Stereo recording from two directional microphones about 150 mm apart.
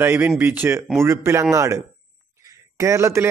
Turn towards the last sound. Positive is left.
turn(degrees=-20)  # may be behind; listen again after turning